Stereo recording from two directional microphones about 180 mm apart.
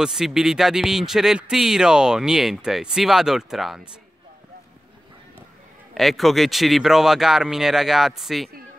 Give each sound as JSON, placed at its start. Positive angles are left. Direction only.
{"t": 0.0, "sound": "speech", "side_deg": 0}
{"t": 5.9, "sound": "speech", "side_deg": 0}